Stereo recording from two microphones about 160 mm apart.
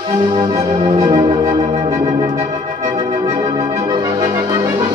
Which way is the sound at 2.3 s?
45° right (ahead or behind).